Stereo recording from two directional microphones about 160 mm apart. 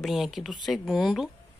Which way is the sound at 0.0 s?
Centre (ahead or behind).